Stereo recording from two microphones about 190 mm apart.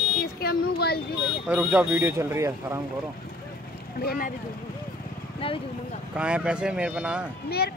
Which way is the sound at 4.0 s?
55° left (ahead or behind).